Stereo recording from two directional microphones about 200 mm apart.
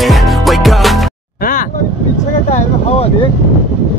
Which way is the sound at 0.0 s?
Centre (ahead or behind).